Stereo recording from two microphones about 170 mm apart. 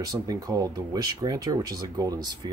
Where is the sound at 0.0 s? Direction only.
20° right (ahead or behind).